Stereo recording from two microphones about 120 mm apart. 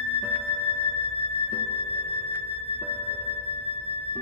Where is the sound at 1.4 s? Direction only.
60° left (ahead or behind).